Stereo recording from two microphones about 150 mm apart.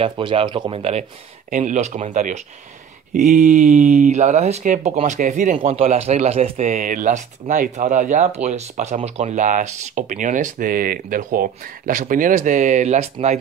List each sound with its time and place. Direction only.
0.0 s speech: 35° right (ahead or behind)
1.5 s speech: 60° right (ahead or behind)
5.9 s speech: 45° right (ahead or behind)